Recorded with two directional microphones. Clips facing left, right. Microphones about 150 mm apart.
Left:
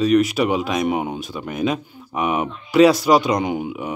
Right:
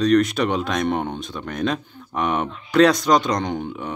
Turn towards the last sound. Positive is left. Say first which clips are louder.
# left 3 dB
turn(degrees=10)  # may be behind; listen again after turning